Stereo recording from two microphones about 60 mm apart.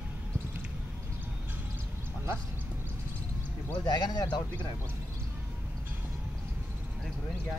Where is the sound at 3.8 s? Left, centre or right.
Left.